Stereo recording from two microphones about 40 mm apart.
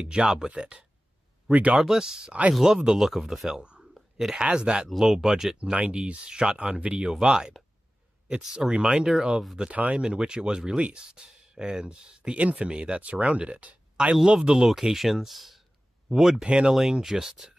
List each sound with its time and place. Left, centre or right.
0.1 s speech: centre
1.5 s speech: right
1.8 s speech: centre
3.9 s a sound: centre
4.4 s speech: right
4.9 s speech: centre
5.6 s speech: right
7.1 s speech: centre
8.6 s speech: right
8.9 s speech: centre
9.6 s speech: right
14.0 s speech: right
16.4 s speech: right
17.0 s speech: centre